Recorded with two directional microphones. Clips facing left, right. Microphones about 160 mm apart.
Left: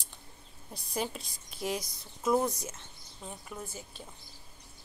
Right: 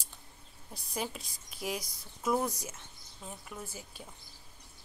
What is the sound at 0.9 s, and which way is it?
A woman's voice, 5° right (ahead or behind).